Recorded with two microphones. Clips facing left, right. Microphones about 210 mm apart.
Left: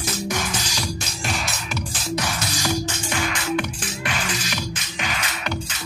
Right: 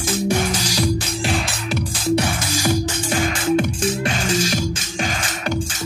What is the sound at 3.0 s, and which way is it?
Music, 45° right (ahead or behind).